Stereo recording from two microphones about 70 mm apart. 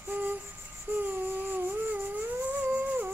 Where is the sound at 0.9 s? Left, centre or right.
Right.